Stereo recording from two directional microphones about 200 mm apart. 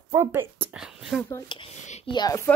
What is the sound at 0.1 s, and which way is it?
Speech, 15° right (ahead or behind).